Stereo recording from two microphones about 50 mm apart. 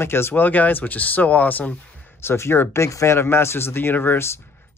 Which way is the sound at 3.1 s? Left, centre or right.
Left.